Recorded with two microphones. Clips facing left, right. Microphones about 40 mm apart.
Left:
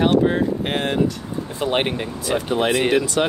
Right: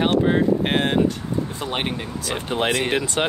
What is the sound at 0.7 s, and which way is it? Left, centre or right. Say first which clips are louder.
Speech: right 1 dB; right.